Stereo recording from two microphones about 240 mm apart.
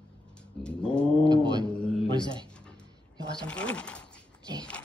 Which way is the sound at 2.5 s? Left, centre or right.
Centre.